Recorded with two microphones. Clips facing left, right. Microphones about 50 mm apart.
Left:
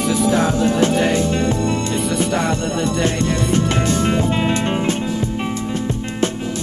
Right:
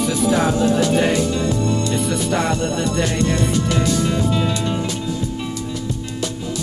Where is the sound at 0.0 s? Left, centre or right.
Centre.